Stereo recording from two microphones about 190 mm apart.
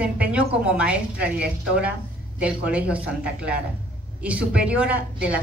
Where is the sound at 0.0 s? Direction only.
5° right (ahead or behind).